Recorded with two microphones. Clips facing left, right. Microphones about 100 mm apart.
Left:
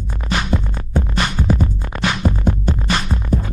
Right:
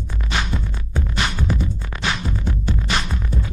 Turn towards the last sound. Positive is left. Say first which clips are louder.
# left 6 dB
turn(degrees=45)  # may be behind; listen again after turning